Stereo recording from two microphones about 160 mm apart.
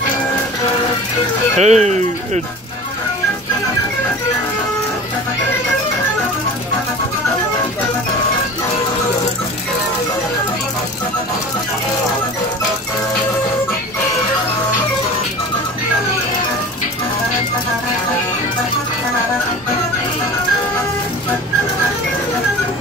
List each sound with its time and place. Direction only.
1.6 s speech: 45° right (ahead or behind)